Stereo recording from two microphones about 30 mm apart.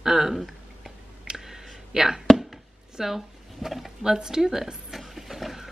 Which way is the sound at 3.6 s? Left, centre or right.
Centre.